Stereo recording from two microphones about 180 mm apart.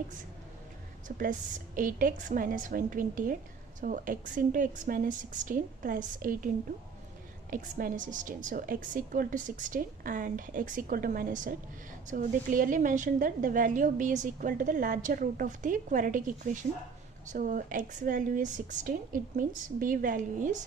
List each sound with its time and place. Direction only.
1.0 s a woman's voice: 50° right (ahead or behind)
7.5 s a woman's voice: 45° right (ahead or behind)